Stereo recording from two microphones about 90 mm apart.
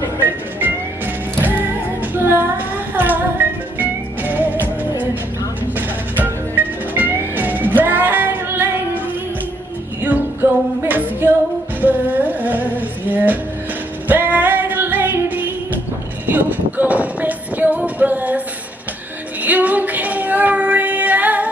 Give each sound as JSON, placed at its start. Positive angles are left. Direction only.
{"t": 0.2, "sound": "music", "side_deg": -20}
{"t": 5.8, "sound": "music", "side_deg": -20}
{"t": 10.4, "sound": "music", "side_deg": -25}
{"t": 19.4, "sound": "child singing", "side_deg": -15}